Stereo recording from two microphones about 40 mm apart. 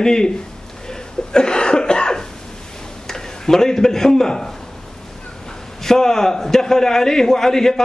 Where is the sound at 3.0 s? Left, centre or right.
Centre.